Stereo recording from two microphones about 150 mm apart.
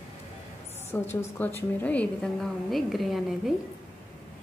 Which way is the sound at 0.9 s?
15° left (ahead or behind).